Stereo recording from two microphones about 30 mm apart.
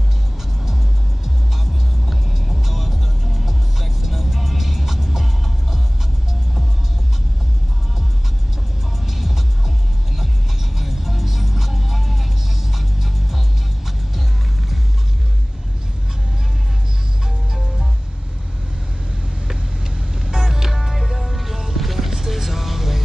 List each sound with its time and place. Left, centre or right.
2.5 s music: centre
4.0 s vehicle: centre
9.0 s music: centre
10.8 s music: centre
20.2 s music: centre
20.7 s music: centre